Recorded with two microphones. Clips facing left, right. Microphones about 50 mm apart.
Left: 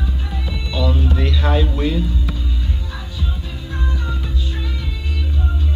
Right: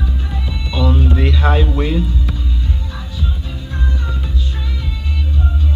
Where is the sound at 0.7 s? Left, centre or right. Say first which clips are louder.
Right 3 dB; right.